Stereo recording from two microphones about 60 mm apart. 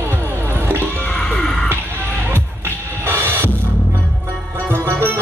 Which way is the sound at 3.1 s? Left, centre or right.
Right.